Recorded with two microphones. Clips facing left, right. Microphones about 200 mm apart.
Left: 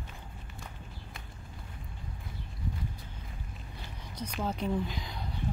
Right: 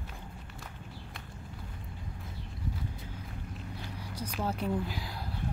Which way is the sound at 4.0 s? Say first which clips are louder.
Even; 10° right (ahead or behind).